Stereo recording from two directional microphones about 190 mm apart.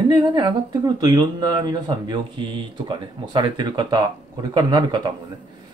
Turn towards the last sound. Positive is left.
turn(degrees=-20)  # may be behind; listen again after turning